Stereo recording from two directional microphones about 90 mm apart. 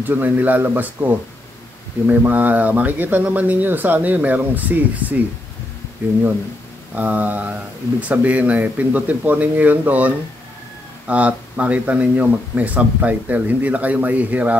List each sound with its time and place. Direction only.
0.0 s speech: 20° right (ahead or behind)
7.0 s speech: 20° right (ahead or behind)